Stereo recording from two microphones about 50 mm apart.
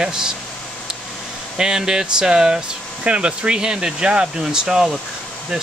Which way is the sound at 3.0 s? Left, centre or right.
Right.